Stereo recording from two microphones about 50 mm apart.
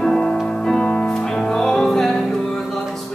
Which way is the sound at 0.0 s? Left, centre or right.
Centre.